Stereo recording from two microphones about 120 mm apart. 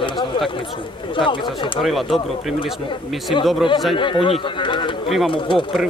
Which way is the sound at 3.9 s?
45° left (ahead or behind).